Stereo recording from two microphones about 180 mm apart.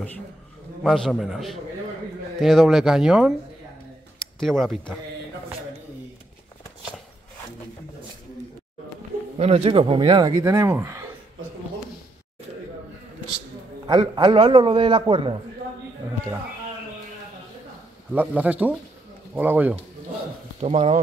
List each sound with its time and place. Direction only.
0.8 s speech: centre (ahead or behind)
4.4 s speech: centre (ahead or behind)
9.4 s speech: 35° right (ahead or behind); by 11.1 s 15° right (ahead or behind)
13.8 s speech: 25° right (ahead or behind)
18.1 s speech: 10° right (ahead or behind)
20.6 s speech: 40° right (ahead or behind)